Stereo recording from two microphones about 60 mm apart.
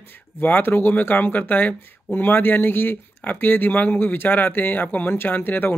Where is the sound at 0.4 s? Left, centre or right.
Left.